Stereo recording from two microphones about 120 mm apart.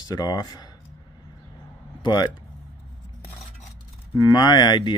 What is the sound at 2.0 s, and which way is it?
Speech, 35° left (ahead or behind).